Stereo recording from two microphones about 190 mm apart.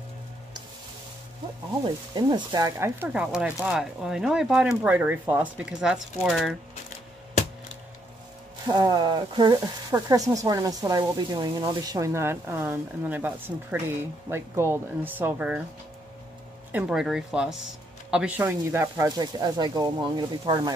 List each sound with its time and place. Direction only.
2.1 s speech: 20° right (ahead or behind); by 6.5 s centre (ahead or behind)
8.6 s speech: 20° right (ahead or behind)
16.7 s speech: 5° right (ahead or behind); by 20.7 s 20° right (ahead or behind)